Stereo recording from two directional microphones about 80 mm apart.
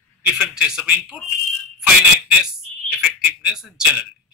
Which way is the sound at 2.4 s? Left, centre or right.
Centre.